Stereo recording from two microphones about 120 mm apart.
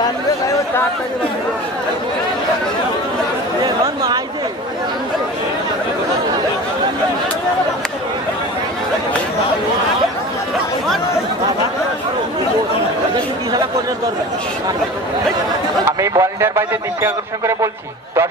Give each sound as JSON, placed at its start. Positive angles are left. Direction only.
{"t": 3.6, "sound": "chatter", "side_deg": -35}
{"t": 13.1, "sound": "speech", "side_deg": -35}
{"t": 16.0, "sound": "a man's voice", "side_deg": -25}